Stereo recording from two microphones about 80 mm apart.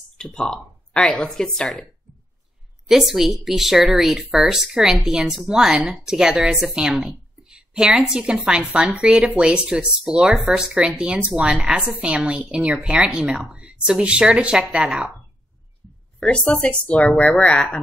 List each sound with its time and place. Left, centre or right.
0.2 s speech: centre
2.9 s speech: centre
16.2 s speech: centre